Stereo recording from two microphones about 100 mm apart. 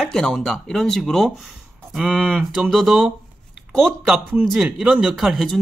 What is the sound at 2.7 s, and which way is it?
Speech, centre (ahead or behind).